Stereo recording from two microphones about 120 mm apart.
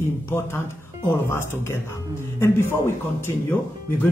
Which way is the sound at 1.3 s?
20° left (ahead or behind).